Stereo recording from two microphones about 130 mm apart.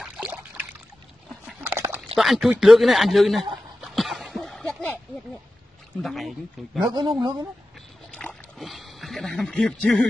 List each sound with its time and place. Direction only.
0.0 s a sound: 5° right (ahead or behind)
1.6 s dog: 15° right (ahead or behind)
2.1 s a man's voice: centre (ahead or behind)
3.8 s a sound: centre (ahead or behind)
6.0 s a man's voice: centre (ahead or behind)
6.8 s speech: 35° right (ahead or behind)
8.1 s rowboat: 5° left (ahead or behind)